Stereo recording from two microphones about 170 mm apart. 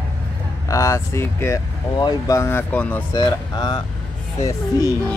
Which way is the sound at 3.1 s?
25° left (ahead or behind).